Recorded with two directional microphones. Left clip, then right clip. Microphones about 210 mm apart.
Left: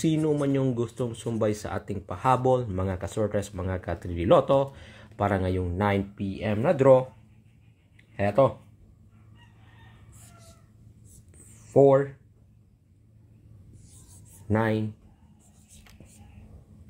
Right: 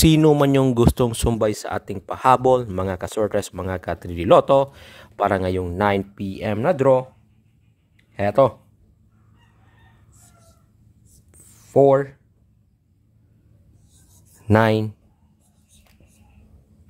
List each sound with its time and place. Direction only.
0.0 s speech: 40° right (ahead or behind)
8.2 s speech: 40° right (ahead or behind)
11.6 s speech: 30° right (ahead or behind)
14.5 s speech: 30° right (ahead or behind)